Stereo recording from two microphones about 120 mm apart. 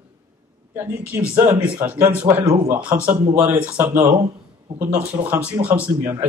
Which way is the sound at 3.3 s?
20° right (ahead or behind).